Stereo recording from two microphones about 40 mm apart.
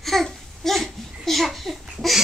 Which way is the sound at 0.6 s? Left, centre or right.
Centre.